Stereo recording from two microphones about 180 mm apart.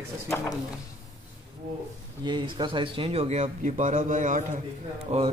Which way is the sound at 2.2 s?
25° right (ahead or behind).